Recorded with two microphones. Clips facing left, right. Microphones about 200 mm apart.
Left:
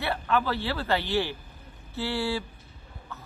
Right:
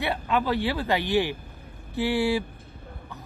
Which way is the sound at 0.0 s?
15° right (ahead or behind).